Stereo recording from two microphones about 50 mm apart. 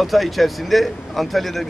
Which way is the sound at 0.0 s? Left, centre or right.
Centre.